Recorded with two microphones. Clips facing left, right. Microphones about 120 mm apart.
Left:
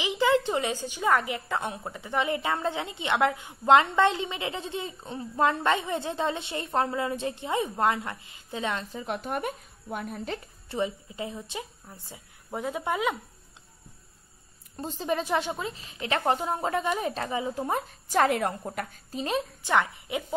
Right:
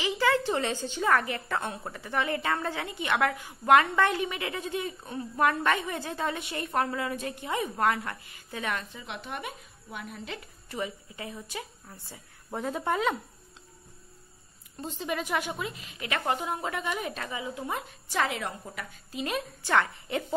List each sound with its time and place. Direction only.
0.0 s a woman's voice: 20° left (ahead or behind)
8.9 s a woman's voice: 45° left (ahead or behind); by 13.2 s 10° left (ahead or behind)
14.8 s a woman's voice: 35° left (ahead or behind)
19.6 s a woman's voice: 15° left (ahead or behind)